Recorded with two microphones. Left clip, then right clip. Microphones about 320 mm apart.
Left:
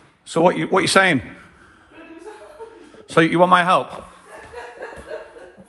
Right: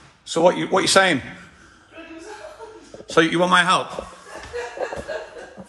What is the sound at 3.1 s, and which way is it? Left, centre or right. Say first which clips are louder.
Speech: left 3 dB; centre.